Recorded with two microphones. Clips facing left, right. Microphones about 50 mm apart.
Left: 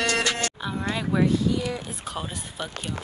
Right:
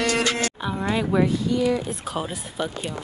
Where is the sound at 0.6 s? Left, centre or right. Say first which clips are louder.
Right 4 dB; centre.